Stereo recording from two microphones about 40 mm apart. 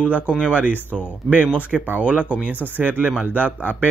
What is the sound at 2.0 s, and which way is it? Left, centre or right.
Speech, right.